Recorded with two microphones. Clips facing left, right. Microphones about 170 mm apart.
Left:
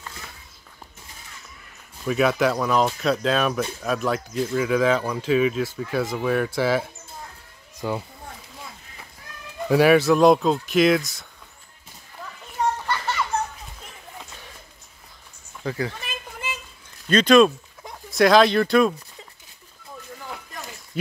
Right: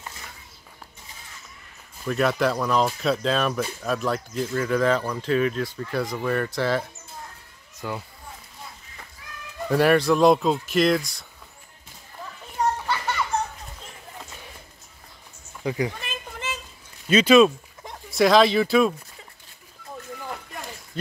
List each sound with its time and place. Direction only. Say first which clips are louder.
2.0 s speech: left 2 dB; 5° left (ahead or behind)
7.8 s a child's voice: left 4 dB; 20° left (ahead or behind)
9.7 s speech: left 3 dB; 5° left (ahead or behind)
12.8 s children playing: even; 5° right (ahead or behind)
15.6 s speech: right 2 dB; 15° right (ahead or behind)
17.1 s speech: even; 5° right (ahead or behind)
20.9 s a sound: left 4 dB; 10° left (ahead or behind)